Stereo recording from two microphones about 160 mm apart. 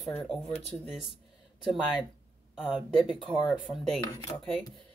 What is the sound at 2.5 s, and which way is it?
Speech, centre (ahead or behind).